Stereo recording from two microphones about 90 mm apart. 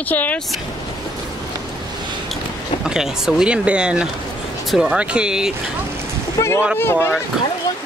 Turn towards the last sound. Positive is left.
turn(degrees=25)  # may be behind; listen again after turning